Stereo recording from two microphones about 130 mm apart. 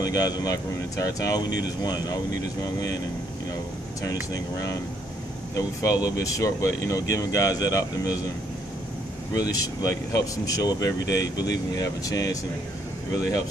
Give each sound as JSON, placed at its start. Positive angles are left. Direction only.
{"t": 0.0, "sound": "speech", "side_deg": 30}
{"t": 4.0, "sound": "speech", "side_deg": 25}
{"t": 9.3, "sound": "speech", "side_deg": 30}